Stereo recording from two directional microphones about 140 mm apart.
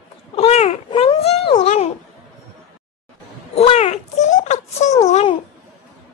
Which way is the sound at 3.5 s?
45° left (ahead or behind).